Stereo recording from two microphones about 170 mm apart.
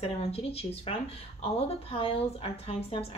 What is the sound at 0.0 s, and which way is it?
A woman's voice, 35° left (ahead or behind).